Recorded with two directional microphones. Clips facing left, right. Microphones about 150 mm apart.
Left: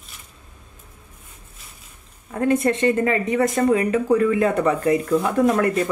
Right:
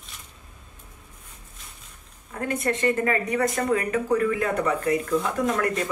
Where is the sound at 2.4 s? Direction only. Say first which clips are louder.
Left 6 dB; 25° left (ahead or behind).